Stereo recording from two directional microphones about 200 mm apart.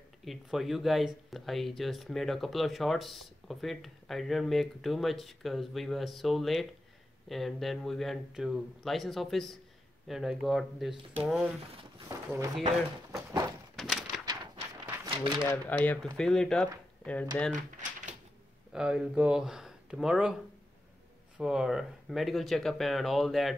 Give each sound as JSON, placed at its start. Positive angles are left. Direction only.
{"t": 0.2, "sound": "speech", "side_deg": 0}
{"t": 13.7, "sound": "bird", "side_deg": 0}
{"t": 14.2, "sound": "a sound", "side_deg": -20}
{"t": 15.5, "sound": "speech", "side_deg": 10}
{"t": 17.5, "sound": "typewriter", "side_deg": -40}
{"t": 18.7, "sound": "speech", "side_deg": -5}
{"t": 21.4, "sound": "speech", "side_deg": -5}